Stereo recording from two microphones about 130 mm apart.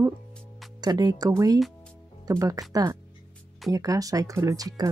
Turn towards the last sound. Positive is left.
turn(degrees=-25)  # may be behind; listen again after turning